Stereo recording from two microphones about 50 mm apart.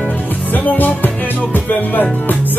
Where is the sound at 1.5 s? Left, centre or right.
Left.